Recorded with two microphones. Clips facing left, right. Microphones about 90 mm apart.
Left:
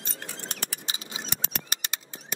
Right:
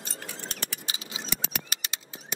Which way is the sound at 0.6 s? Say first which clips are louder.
Left 1 dB; 50° left (ahead or behind).